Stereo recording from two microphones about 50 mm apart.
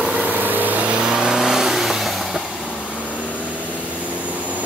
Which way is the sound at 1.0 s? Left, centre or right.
Centre.